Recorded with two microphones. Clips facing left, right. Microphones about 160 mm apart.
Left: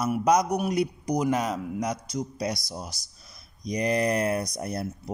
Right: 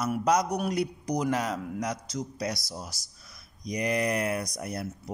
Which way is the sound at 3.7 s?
30° left (ahead or behind).